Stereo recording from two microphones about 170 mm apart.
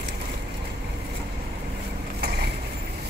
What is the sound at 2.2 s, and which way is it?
Vehicle, 70° right (ahead or behind).